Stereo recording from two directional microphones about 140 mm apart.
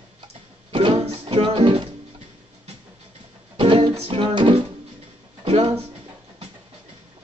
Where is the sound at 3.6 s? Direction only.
40° right (ahead or behind).